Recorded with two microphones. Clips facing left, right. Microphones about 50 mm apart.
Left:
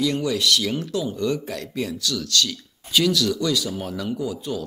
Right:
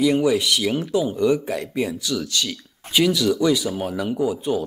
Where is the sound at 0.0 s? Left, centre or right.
Centre.